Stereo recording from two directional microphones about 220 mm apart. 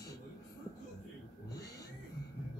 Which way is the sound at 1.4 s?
15° left (ahead or behind).